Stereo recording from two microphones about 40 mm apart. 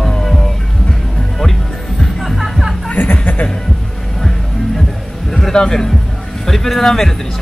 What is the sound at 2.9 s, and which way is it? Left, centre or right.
Speech, left.